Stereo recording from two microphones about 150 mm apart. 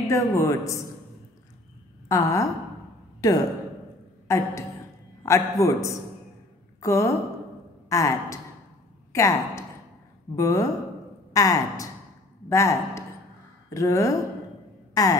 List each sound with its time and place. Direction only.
0.1 s a man's voice: 20° left (ahead or behind)
2.0 s a man's voice: 20° left (ahead or behind)